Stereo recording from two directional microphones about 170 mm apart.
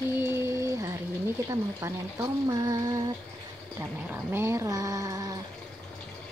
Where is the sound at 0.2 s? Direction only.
15° right (ahead or behind).